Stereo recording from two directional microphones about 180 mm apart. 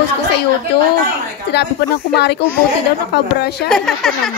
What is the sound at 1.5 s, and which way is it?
A woman's voice, 65° left (ahead or behind).